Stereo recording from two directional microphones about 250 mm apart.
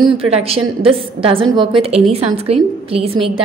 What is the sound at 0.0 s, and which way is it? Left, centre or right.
A woman's voice, right.